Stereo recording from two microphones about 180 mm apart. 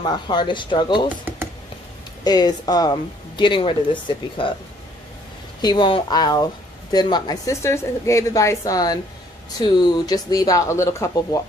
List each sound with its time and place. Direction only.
0.0 s speech: 25° left (ahead or behind)
1.0 s computer keyboard: 10° right (ahead or behind)
2.2 s speech: 20° left (ahead or behind)
5.6 s speech: 25° left (ahead or behind)